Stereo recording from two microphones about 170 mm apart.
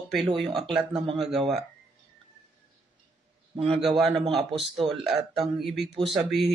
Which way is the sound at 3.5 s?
35° right (ahead or behind).